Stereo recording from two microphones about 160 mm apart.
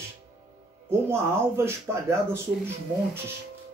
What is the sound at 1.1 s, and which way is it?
Speech, 15° right (ahead or behind).